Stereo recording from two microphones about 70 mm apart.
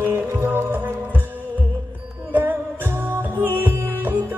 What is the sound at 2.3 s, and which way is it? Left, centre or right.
Music, right.